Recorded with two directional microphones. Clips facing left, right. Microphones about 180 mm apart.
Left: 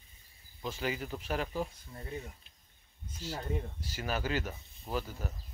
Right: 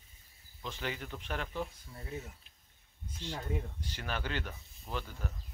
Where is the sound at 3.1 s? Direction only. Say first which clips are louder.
Left 1 dB; 5° left (ahead or behind).